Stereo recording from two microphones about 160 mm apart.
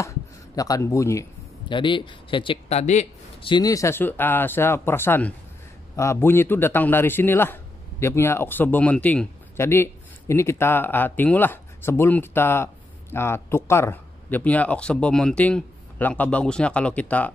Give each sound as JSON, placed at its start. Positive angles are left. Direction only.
{"t": 0.6, "sound": "a man's voice", "side_deg": 20}
{"t": 1.7, "sound": "speech", "side_deg": 30}
{"t": 3.4, "sound": "a man's voice", "side_deg": 25}